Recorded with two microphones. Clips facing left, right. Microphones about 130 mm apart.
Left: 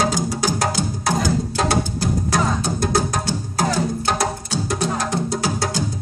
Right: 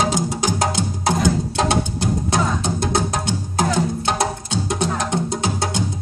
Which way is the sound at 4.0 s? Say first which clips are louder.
Even; 25° right (ahead or behind).